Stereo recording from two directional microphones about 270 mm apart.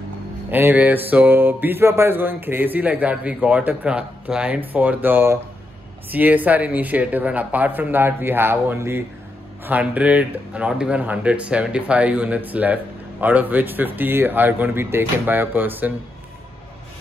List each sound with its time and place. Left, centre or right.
0.5 s speech: centre